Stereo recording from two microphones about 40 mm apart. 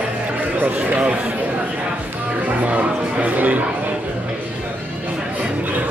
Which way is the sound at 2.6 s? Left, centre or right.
Right.